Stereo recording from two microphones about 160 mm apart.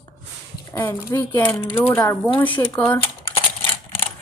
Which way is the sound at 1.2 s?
10° left (ahead or behind).